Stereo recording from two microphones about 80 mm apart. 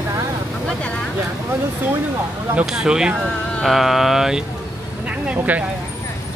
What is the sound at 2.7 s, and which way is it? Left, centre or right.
Speech, centre.